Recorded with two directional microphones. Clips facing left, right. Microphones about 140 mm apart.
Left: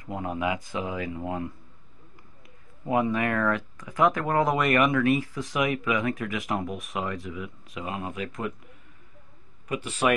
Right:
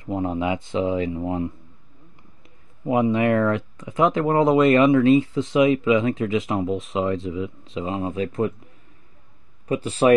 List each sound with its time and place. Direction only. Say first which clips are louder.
0.0 s speech: right 5 dB; 25° right (ahead or behind)
2.8 s speech: right 5 dB; 20° right (ahead or behind)
9.7 s speech: right 7 dB; 30° right (ahead or behind)